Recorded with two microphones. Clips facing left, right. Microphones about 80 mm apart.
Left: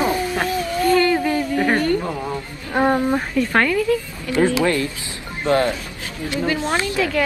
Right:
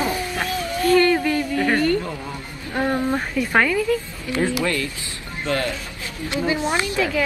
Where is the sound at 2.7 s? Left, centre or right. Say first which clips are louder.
Left 5 dB; left.